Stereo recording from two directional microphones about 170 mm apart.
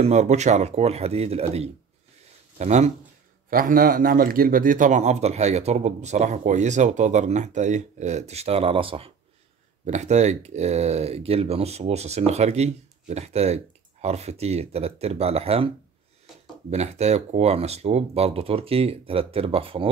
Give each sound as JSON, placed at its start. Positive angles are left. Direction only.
{"t": 0.0, "sound": "a man's voice", "side_deg": -40}
{"t": 3.4, "sound": "a man's voice", "side_deg": -55}
{"t": 9.8, "sound": "speech", "side_deg": -40}
{"t": 16.7, "sound": "speech", "side_deg": -40}